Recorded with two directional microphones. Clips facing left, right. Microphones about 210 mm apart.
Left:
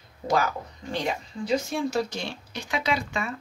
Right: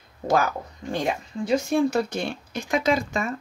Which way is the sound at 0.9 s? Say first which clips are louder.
Right 3 dB; 45° right (ahead or behind).